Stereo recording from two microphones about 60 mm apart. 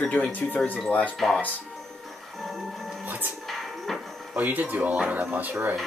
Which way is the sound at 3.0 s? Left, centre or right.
Right.